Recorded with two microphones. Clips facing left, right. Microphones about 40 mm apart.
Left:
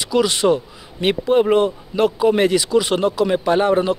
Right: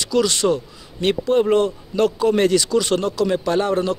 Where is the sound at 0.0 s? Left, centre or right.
Centre.